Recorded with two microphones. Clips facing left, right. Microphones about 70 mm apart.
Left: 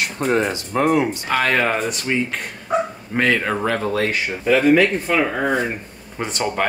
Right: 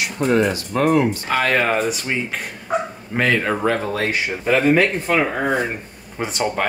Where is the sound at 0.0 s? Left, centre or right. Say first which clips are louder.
Right 2 dB; left.